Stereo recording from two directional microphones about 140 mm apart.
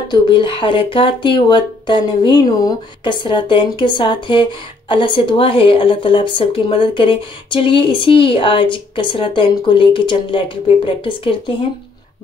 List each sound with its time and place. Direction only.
0.1 s speech: 35° left (ahead or behind)